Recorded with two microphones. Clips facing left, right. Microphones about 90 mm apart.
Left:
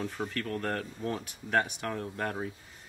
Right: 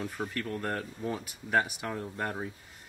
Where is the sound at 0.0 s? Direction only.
5° right (ahead or behind).